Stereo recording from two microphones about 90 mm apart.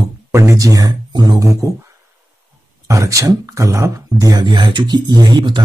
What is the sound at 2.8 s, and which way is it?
Speech, 35° right (ahead or behind).